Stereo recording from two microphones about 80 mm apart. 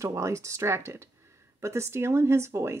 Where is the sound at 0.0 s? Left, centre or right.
Right.